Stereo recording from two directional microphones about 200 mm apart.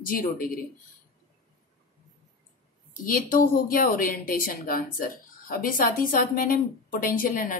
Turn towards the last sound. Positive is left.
turn(degrees=45)  # may be behind; listen again after turning